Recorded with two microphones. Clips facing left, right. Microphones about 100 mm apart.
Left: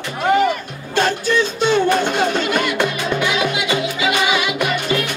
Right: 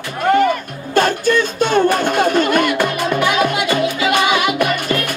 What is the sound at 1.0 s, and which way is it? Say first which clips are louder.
Music: right 3 dB; 50° right (ahead or behind).